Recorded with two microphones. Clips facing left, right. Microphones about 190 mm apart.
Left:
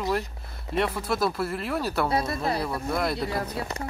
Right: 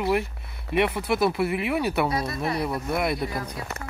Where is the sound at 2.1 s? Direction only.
30° left (ahead or behind).